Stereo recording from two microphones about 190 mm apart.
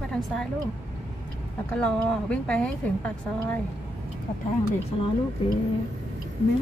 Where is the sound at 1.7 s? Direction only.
5° left (ahead or behind).